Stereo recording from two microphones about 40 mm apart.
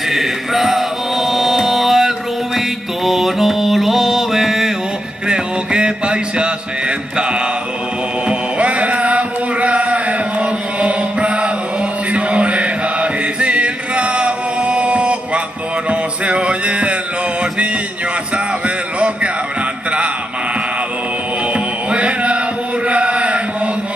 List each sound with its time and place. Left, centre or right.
0.1 s music: centre
3.1 s mantra: centre
5.3 s mantra: right
8.3 s music: right
12.1 s chant: right
15.9 s music: right
18.9 s a sound: right
21.5 s chant: right